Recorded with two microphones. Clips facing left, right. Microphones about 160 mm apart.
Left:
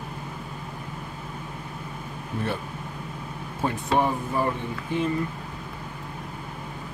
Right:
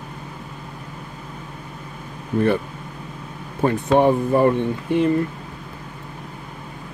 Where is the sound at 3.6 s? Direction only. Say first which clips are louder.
Right 8 dB; 60° right (ahead or behind).